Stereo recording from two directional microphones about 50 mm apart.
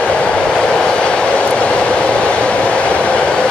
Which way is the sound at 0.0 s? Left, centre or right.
Left.